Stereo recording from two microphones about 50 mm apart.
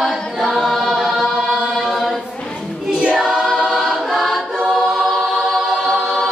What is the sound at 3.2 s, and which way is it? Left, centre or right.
Choir, centre.